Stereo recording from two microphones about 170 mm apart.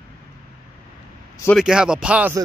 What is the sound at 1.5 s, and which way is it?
Speech, 5° right (ahead or behind).